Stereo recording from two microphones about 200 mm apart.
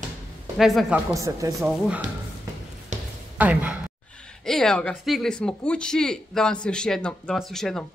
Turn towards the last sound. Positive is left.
turn(degrees=0)  # may be behind; listen again after turning